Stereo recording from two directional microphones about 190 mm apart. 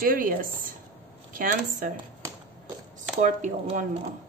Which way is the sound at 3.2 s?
40° right (ahead or behind).